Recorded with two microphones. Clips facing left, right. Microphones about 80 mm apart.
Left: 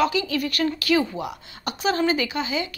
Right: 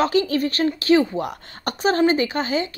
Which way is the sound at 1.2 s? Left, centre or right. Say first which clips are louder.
Right 3 dB; right.